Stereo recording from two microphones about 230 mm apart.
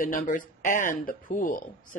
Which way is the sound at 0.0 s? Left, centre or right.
Left.